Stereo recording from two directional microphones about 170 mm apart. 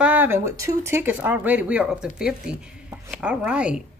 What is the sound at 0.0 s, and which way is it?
Speech, 10° right (ahead or behind).